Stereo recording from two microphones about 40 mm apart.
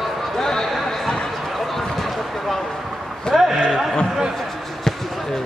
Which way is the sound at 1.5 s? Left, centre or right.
Centre.